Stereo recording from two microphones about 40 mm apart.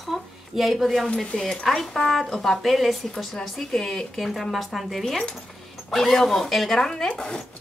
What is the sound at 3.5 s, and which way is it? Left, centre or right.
Speech, centre.